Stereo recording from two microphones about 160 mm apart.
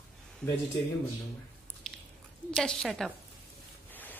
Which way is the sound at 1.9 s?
5° left (ahead or behind).